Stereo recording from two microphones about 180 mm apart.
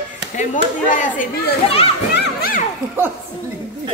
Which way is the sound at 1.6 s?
30° left (ahead or behind).